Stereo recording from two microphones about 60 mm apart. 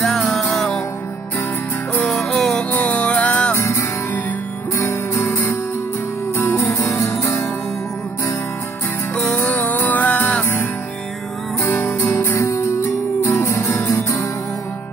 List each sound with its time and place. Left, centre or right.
0.0 s music: centre
2.0 s music: centre
2.7 s music: left
3.5 s music: left
9.1 s music: centre
9.4 s music: left
11.6 s music: left